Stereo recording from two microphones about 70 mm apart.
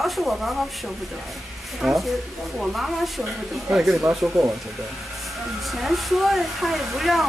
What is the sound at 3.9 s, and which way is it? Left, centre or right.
Speech, centre.